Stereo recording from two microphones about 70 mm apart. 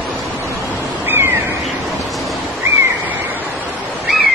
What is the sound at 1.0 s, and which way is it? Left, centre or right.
Crow, right.